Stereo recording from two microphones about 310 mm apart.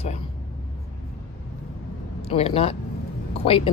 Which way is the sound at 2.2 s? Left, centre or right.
Centre.